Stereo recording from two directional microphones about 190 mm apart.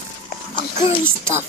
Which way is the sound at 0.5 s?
30° left (ahead or behind).